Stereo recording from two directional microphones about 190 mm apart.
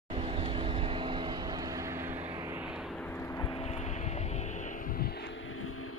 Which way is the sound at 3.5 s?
35° left (ahead or behind).